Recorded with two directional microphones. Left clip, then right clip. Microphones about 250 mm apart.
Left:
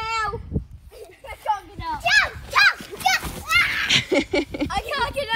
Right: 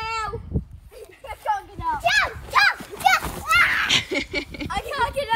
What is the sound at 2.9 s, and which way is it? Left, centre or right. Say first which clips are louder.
Children playing: right 3 dB; centre.